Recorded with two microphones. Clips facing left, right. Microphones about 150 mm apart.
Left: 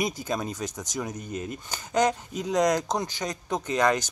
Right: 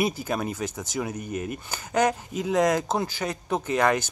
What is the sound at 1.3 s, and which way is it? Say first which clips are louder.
Speech: right 3 dB; 60° right (ahead or behind).